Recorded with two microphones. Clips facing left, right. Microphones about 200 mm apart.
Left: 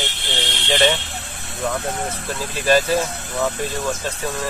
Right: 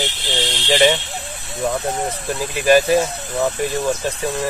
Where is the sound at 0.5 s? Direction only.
25° right (ahead or behind).